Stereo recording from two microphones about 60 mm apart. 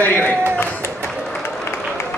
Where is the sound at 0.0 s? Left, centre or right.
Left.